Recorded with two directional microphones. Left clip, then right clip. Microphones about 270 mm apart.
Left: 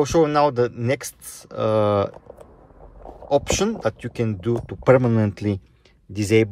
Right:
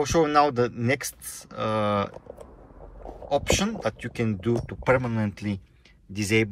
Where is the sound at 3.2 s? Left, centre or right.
Centre.